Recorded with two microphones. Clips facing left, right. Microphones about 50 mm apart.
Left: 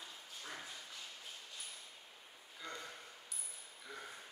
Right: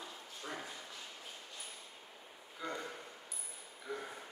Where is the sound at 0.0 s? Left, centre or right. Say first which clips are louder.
Right 4 dB; centre.